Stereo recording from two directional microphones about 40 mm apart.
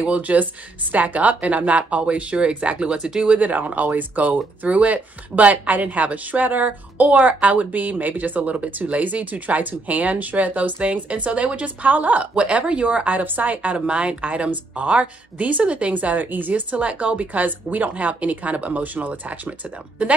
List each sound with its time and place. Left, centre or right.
0.0 s speech: right
3.3 s speech: right
12.4 s speech: right